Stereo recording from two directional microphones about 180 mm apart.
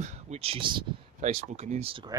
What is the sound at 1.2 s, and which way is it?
Speech, 40° right (ahead or behind).